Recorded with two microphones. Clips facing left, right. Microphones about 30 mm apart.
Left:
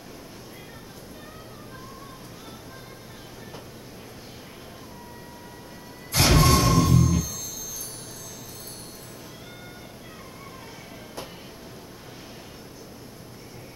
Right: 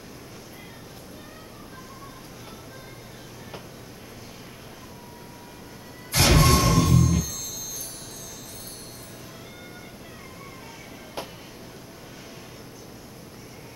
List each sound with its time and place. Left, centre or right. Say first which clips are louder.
6.1 s music: even; centre
11.2 s music: right 3 dB; right